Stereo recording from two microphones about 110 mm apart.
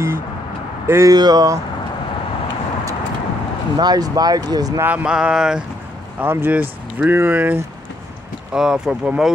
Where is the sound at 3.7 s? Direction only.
35° right (ahead or behind).